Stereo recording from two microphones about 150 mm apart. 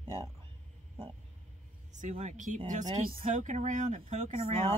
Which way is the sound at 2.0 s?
50° right (ahead or behind).